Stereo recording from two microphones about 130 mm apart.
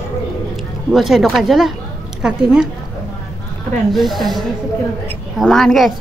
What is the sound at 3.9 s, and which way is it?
Speech, centre (ahead or behind).